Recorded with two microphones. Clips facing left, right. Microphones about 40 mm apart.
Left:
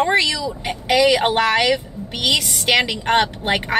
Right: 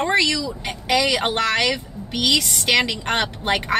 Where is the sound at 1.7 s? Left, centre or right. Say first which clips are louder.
Left 4 dB; left.